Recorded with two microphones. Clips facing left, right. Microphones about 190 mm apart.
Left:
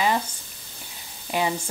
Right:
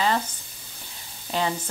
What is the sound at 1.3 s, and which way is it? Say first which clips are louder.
Speech: left 1 dB; 10° left (ahead or behind).